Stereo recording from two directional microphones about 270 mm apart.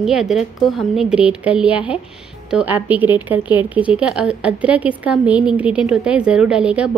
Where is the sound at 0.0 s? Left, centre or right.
Centre.